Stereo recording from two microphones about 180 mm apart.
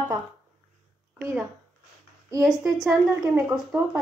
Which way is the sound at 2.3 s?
20° right (ahead or behind).